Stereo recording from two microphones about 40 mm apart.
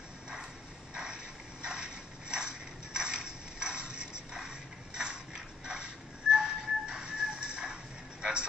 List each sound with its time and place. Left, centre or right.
0.9 s crushing: right
6.3 s music: centre